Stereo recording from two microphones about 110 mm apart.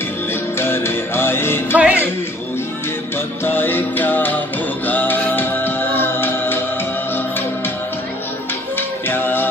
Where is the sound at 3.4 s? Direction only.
15° left (ahead or behind).